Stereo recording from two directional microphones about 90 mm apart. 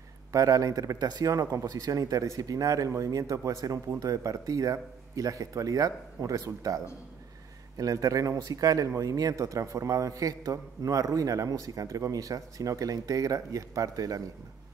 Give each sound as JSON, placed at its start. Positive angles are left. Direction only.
{"t": 0.3, "sound": "speech", "side_deg": -40}